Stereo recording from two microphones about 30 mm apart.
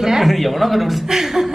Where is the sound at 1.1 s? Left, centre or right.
Centre.